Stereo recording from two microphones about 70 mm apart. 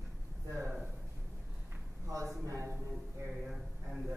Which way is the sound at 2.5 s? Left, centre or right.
Right.